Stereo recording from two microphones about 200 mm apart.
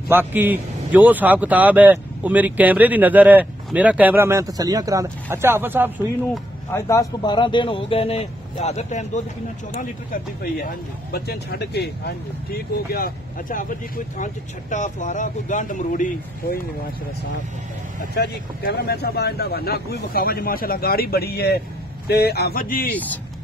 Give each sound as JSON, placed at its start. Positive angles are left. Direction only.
{"t": 0.1, "sound": "speech", "side_deg": -10}
{"t": 6.7, "sound": "speech", "side_deg": 15}
{"t": 18.1, "sound": "speech", "side_deg": 50}